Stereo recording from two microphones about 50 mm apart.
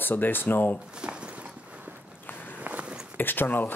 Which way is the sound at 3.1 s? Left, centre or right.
Left.